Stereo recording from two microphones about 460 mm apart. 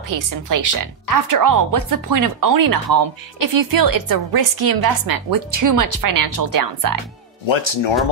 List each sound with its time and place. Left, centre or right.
0.1 s speech: right
7.4 s speech: left